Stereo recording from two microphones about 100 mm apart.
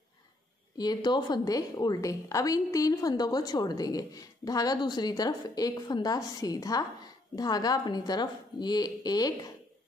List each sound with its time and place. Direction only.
0.7 s a woman's voice: 45° left (ahead or behind)